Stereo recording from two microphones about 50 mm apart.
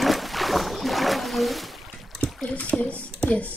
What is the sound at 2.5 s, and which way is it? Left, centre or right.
Speech, left.